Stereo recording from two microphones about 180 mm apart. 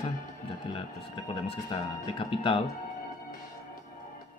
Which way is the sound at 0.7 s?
30° left (ahead or behind).